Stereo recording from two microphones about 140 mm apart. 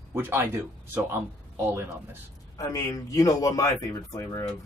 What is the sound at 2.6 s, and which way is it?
A man's voice, 25° left (ahead or behind).